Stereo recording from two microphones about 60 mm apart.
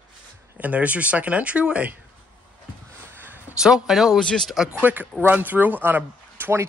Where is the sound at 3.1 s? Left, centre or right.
Right.